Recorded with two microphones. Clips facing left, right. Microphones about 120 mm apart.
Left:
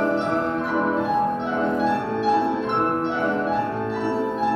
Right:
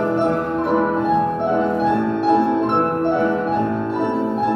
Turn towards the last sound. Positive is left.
turn(degrees=-50)  # may be behind; listen again after turning